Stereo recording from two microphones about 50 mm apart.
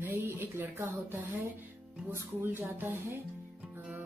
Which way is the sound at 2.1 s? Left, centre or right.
Right.